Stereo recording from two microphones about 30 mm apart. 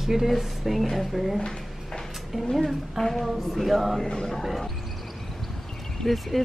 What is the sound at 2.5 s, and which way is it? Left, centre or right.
Speech, centre.